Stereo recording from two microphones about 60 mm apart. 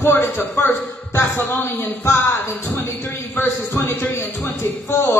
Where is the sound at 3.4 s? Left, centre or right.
Left.